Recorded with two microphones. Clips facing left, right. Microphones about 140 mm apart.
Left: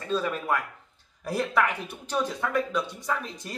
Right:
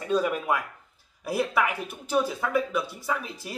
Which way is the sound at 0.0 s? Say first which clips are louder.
Right 3 dB; 15° right (ahead or behind).